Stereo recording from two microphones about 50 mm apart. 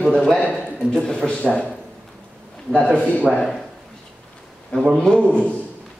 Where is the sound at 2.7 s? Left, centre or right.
Centre.